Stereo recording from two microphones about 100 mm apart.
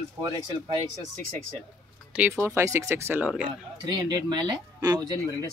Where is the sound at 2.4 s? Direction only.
25° right (ahead or behind).